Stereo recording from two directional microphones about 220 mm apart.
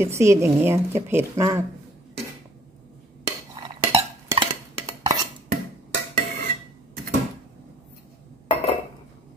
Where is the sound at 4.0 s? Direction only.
20° right (ahead or behind).